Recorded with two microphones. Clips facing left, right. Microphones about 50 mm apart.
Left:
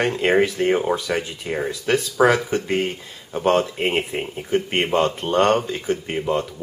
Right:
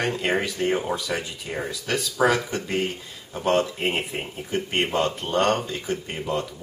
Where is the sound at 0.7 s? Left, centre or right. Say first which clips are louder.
Left 5 dB; left.